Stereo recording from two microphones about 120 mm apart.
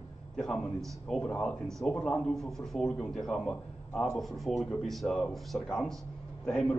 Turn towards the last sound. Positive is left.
turn(degrees=5)  # may be behind; listen again after turning